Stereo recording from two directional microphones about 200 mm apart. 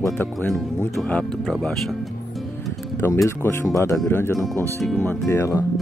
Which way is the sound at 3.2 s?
15° left (ahead or behind).